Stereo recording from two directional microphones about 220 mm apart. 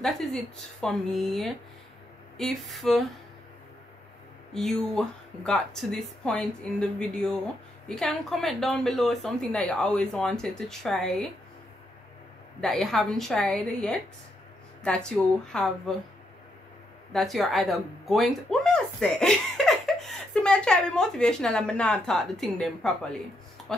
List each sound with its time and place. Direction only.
0.0 s a woman's voice: centre (ahead or behind)
4.6 s a woman's voice: centre (ahead or behind)
12.5 s a woman's voice: centre (ahead or behind)
17.1 s speech: centre (ahead or behind)